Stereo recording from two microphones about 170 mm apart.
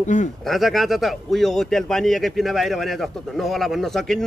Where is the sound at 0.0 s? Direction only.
45° left (ahead or behind).